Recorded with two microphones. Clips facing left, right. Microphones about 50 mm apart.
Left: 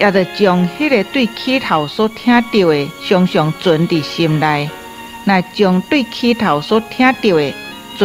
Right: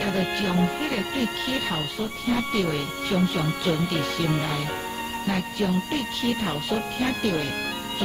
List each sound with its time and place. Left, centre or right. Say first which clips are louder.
0.0 s speech: left 14 dB; left